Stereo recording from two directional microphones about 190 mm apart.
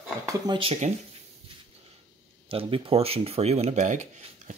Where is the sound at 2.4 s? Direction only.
30° right (ahead or behind).